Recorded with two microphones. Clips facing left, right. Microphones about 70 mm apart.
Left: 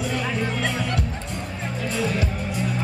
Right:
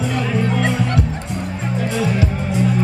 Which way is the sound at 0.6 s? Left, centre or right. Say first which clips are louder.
Right 6 dB; right.